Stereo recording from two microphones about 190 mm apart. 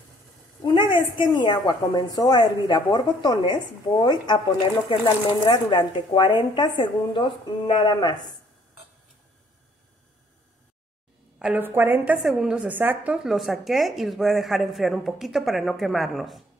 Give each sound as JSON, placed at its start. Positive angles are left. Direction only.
{"t": 0.7, "sound": "a woman's voice", "side_deg": 25}
{"t": 11.3, "sound": "a woman's voice", "side_deg": -5}